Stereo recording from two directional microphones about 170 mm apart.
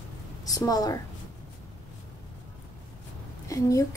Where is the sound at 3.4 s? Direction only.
20° left (ahead or behind).